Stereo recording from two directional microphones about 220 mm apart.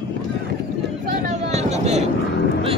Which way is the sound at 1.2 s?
30° right (ahead or behind).